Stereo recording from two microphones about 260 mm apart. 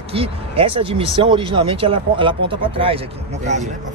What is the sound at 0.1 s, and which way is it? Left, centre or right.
Speech, right.